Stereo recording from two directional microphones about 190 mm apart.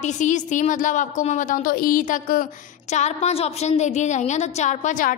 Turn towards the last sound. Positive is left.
turn(degrees=40)  # may be behind; listen again after turning